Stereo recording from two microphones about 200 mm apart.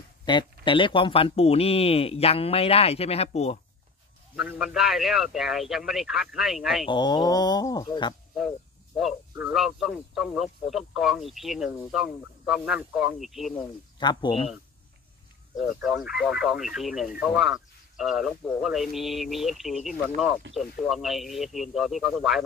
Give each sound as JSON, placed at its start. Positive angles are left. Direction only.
{"t": 0.2, "sound": "speech", "side_deg": 25}
{"t": 4.4, "sound": "speech", "side_deg": -5}
{"t": 6.9, "sound": "speech", "side_deg": 20}
{"t": 8.4, "sound": "a sound", "side_deg": 0}
{"t": 9.3, "sound": "speech", "side_deg": -5}
{"t": 13.9, "sound": "speech", "side_deg": 20}
{"t": 15.5, "sound": "speech", "side_deg": 0}